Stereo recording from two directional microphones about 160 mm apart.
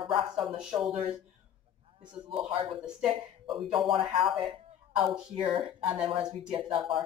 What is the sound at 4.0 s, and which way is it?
Speech, 35° right (ahead or behind).